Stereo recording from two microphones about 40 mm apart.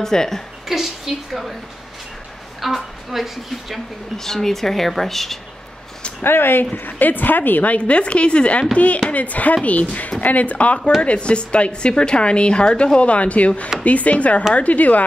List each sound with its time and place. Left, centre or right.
0.0 s a woman's voice: centre
0.7 s a woman's voice: centre
2.6 s speech: centre
4.2 s a woman's voice: centre
6.2 s speech: left
6.7 s a woman's voice: left